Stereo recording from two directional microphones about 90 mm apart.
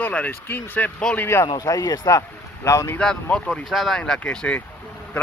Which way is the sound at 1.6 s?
45° left (ahead or behind).